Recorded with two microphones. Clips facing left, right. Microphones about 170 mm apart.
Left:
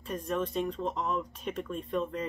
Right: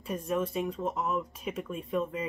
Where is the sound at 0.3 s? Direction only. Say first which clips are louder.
Right 1 dB; 5° right (ahead or behind).